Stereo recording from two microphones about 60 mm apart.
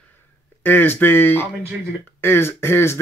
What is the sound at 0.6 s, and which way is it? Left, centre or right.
Speech, left.